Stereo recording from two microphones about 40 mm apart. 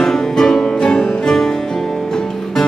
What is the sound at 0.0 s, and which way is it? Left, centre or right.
Music, centre.